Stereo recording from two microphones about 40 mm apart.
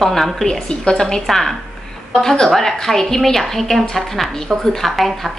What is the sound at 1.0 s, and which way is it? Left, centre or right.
A woman's voice, centre.